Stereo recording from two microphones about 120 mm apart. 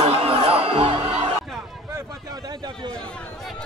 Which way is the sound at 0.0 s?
55° right (ahead or behind).